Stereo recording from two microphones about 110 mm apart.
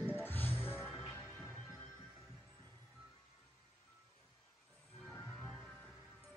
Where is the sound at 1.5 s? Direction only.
30° right (ahead or behind).